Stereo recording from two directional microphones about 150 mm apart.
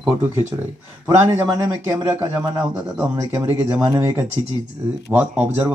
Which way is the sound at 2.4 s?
20° right (ahead or behind).